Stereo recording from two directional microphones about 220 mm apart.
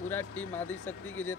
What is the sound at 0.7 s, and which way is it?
Speech, 65° left (ahead or behind).